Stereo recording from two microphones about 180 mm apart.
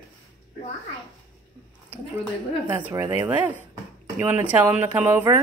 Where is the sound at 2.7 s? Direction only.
10° right (ahead or behind).